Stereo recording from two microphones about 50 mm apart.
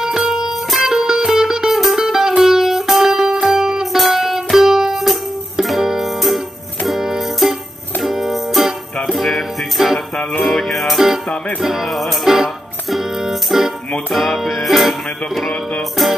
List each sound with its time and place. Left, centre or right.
0.0 s music: centre
9.9 s music: centre
10.4 s music: centre